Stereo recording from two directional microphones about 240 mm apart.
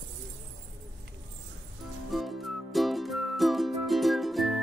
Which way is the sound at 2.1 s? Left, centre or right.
Centre.